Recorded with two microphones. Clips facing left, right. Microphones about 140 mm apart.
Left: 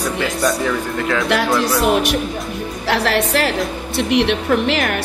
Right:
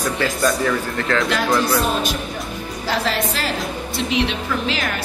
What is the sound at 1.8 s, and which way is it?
A woman's voice, 70° left (ahead or behind).